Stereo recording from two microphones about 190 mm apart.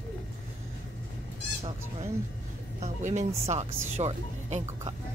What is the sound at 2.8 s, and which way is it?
Speech, 35° right (ahead or behind).